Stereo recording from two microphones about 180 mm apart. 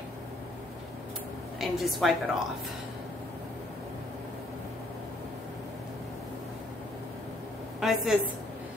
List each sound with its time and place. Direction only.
1.6 s a woman's voice: centre (ahead or behind)
7.8 s a woman's voice: centre (ahead or behind)